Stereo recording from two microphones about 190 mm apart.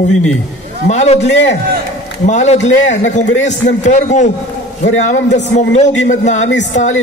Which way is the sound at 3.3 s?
70° left (ahead or behind).